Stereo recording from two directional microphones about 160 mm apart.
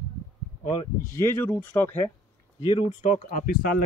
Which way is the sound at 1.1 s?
15° left (ahead or behind).